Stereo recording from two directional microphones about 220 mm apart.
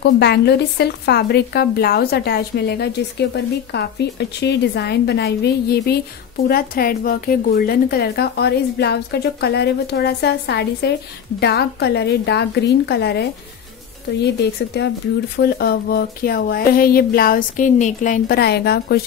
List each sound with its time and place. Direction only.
0.0 s a woman's voice: 50° left (ahead or behind)